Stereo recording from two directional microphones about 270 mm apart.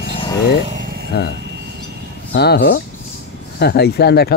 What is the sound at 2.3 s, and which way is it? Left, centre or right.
Speech, left.